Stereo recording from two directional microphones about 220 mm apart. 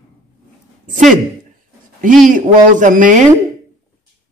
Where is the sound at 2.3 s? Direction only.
35° right (ahead or behind).